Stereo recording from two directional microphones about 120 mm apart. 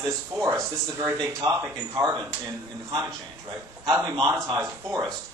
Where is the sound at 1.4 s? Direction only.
40° right (ahead or behind).